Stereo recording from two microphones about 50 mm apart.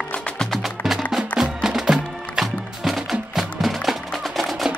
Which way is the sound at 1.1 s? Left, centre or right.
Centre.